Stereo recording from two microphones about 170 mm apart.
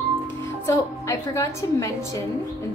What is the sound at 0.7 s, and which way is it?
A woman's voice, 15° left (ahead or behind).